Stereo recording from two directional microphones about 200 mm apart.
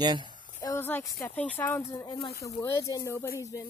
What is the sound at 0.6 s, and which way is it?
Speech, 10° left (ahead or behind).